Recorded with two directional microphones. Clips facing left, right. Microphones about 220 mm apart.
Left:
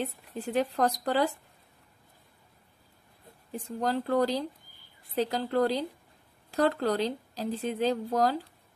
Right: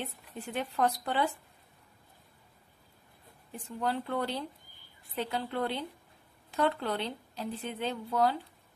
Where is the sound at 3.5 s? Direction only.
40° left (ahead or behind).